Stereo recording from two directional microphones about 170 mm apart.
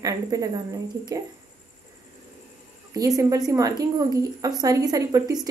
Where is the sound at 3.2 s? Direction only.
20° right (ahead or behind).